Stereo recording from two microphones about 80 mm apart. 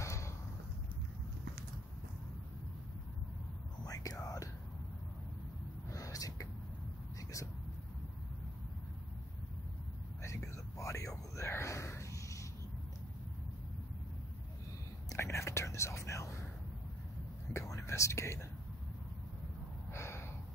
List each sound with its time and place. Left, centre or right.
0.0 s boat: left
3.8 s whispering: left
5.9 s a sound: left
10.2 s a sound: left
15.0 s whispering: left
17.5 s whispering: left
19.9 s gasp: left